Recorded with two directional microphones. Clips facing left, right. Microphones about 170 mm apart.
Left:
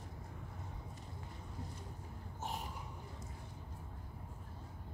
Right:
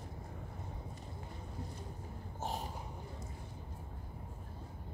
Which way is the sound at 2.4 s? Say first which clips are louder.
Right 3 dB; 35° right (ahead or behind).